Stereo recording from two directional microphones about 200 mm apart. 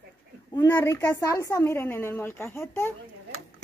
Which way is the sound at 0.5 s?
15° left (ahead or behind).